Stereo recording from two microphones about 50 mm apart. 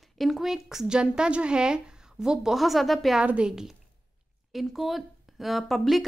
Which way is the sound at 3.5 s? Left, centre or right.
Centre.